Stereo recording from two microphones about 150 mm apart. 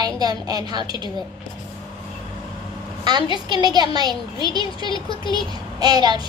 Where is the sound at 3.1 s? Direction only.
30° right (ahead or behind).